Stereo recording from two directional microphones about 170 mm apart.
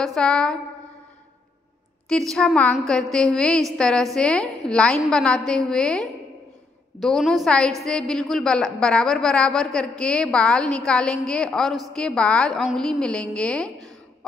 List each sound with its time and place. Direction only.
0.0 s a woman's voice: 5° left (ahead or behind)
2.0 s a woman's voice: 5° left (ahead or behind)